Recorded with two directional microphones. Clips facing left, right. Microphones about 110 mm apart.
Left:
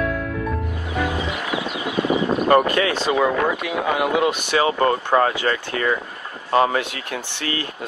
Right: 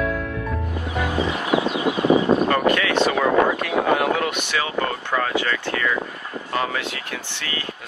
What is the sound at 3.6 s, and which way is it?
Speech, 10° left (ahead or behind).